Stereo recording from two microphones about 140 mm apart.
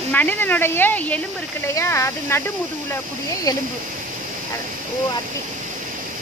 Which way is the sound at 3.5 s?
25° left (ahead or behind).